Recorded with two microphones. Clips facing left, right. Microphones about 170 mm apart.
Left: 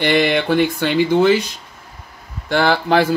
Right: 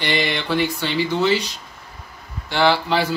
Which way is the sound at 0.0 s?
55° left (ahead or behind).